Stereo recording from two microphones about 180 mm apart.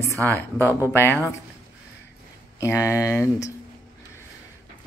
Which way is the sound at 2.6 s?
15° left (ahead or behind).